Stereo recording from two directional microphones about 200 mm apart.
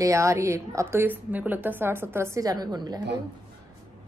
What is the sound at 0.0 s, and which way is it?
A woman's voice, 15° right (ahead or behind).